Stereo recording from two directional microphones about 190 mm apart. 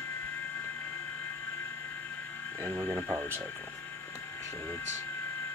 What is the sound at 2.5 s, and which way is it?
Speech, 10° left (ahead or behind).